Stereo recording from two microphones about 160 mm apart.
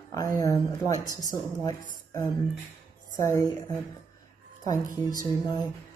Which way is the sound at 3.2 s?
20° left (ahead or behind).